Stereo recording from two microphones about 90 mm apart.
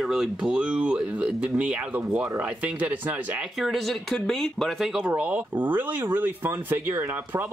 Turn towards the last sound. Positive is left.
turn(degrees=-25)  # may be behind; listen again after turning